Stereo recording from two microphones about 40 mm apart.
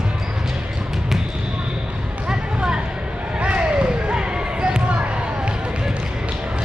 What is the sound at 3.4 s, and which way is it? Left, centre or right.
Basketball bounce, right.